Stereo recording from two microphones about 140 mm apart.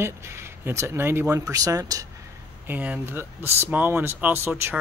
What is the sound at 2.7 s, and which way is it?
Speech, 15° right (ahead or behind).